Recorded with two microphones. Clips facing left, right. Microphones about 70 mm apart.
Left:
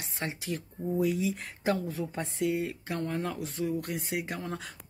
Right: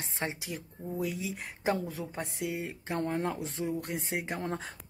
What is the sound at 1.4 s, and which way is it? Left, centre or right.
Speech, centre.